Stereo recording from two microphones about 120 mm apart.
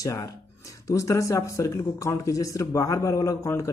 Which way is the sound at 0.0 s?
25° left (ahead or behind).